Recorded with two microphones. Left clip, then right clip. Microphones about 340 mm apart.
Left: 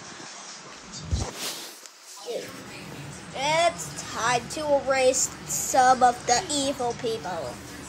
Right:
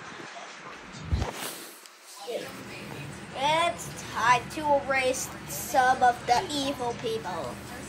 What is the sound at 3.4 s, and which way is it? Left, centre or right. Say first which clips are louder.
Music: left 2 dB; centre.